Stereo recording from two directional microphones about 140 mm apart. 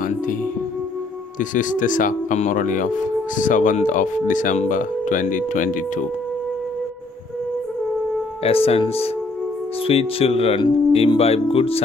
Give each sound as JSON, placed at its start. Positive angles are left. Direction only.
{"t": 1.4, "sound": "speech", "side_deg": 70}
{"t": 8.5, "sound": "speech", "side_deg": 45}